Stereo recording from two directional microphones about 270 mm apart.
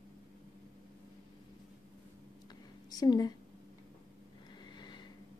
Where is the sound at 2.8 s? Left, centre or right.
Centre.